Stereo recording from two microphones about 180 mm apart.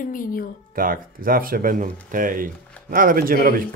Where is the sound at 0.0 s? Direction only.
50° left (ahead or behind).